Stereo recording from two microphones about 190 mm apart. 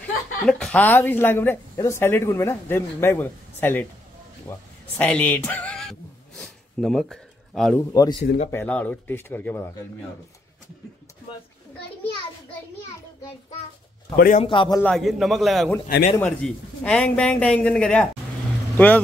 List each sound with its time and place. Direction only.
0.0 s speech: 5° left (ahead or behind)
6.4 s a sound: centre (ahead or behind)
7.9 s speech: 20° left (ahead or behind)
14.1 s a man's voice: 50° left (ahead or behind)
14.4 s a man's voice: 25° left (ahead or behind)
14.8 s speech: 5° left (ahead or behind)